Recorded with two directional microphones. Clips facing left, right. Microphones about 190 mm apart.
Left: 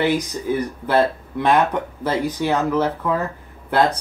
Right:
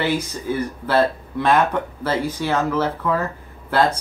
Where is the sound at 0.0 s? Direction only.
15° left (ahead or behind).